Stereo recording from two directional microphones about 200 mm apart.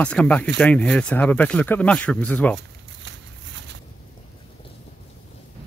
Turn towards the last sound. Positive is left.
turn(degrees=-65)  # may be behind; listen again after turning